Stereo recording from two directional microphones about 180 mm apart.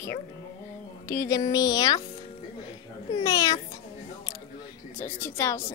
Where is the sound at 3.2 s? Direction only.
20° left (ahead or behind).